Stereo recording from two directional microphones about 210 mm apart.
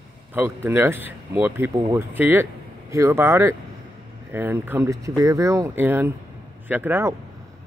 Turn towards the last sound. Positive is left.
turn(degrees=-10)  # may be behind; listen again after turning